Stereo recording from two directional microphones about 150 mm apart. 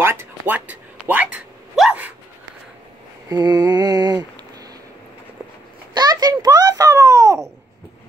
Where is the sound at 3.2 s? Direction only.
25° right (ahead or behind).